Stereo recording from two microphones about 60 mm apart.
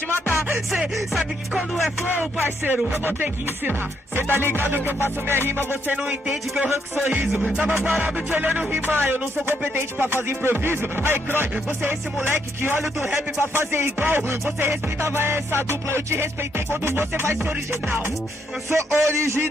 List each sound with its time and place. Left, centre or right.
2.1 s music: right
6.0 s speech: centre
7.7 s music: right
18.7 s music: right